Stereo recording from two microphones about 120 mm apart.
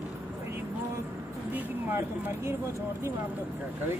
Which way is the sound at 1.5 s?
15° right (ahead or behind).